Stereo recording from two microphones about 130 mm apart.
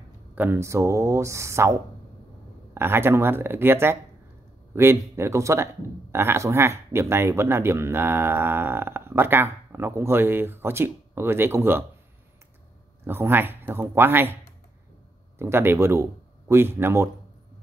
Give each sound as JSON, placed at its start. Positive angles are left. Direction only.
{"t": 0.3, "sound": "speech", "side_deg": -15}
{"t": 13.0, "sound": "speech", "side_deg": -20}